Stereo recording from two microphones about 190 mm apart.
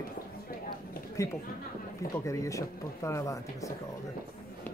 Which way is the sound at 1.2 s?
15° left (ahead or behind).